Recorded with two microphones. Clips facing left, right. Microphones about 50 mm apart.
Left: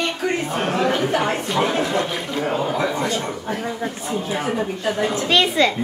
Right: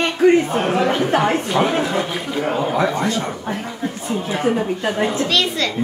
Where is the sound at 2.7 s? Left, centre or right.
Right.